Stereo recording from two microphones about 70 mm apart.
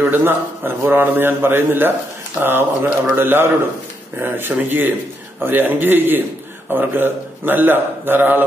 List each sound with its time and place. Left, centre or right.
0.0 s a man's voice: right